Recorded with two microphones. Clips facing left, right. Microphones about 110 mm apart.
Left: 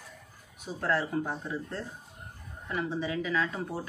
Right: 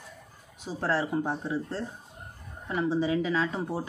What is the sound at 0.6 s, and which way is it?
Speech, 30° right (ahead or behind).